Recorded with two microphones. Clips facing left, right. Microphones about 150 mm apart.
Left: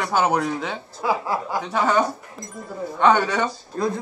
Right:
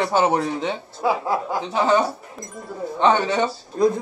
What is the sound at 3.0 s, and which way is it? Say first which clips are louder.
Speech: even; 20° right (ahead or behind).